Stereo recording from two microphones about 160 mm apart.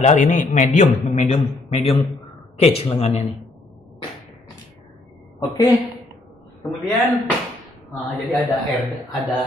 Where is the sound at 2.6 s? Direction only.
40° left (ahead or behind).